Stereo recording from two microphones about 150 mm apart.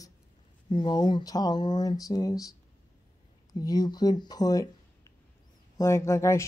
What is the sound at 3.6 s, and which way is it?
Speech, 25° left (ahead or behind).